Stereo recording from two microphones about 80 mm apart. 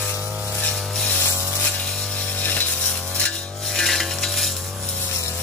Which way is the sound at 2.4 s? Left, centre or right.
Left.